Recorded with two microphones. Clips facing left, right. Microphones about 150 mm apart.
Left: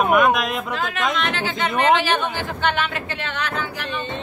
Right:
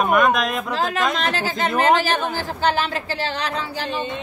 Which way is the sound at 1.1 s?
40° right (ahead or behind).